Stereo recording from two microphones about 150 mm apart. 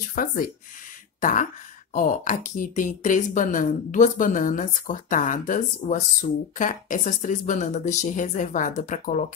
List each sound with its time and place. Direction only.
0.1 s a woman's voice: 60° left (ahead or behind)